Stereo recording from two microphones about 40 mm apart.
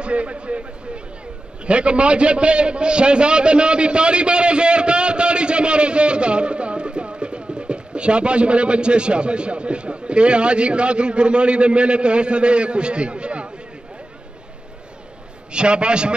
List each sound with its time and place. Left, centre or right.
0.0 s a man's voice: right
15.5 s a man's voice: right